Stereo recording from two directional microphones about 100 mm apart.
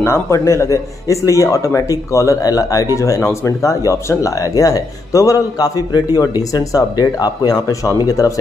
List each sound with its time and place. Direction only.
0.0 s speech: 30° left (ahead or behind)